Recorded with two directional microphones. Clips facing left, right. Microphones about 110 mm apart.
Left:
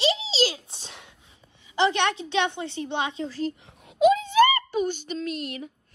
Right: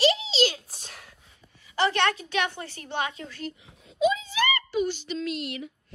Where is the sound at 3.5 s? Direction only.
60° left (ahead or behind); by 5.7 s 40° left (ahead or behind).